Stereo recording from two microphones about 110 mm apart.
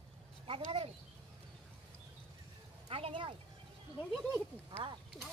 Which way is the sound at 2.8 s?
60° right (ahead or behind).